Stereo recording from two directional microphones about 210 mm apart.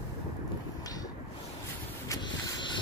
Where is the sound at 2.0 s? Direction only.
20° left (ahead or behind).